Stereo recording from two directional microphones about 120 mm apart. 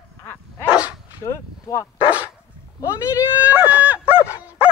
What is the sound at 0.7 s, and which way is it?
Dog, 10° right (ahead or behind).